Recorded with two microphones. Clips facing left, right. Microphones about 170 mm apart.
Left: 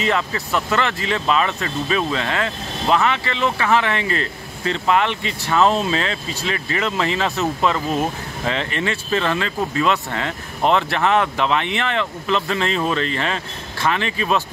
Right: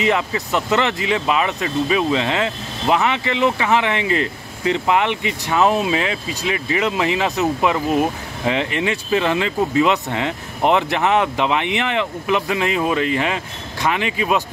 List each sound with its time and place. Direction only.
0.0 s speech: 15° right (ahead or behind)